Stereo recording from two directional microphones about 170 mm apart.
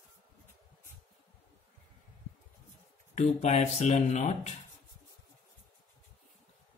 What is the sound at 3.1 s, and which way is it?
Speech, 40° left (ahead or behind).